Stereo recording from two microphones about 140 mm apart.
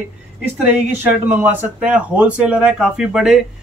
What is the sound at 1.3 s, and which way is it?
Speech, 15° right (ahead or behind).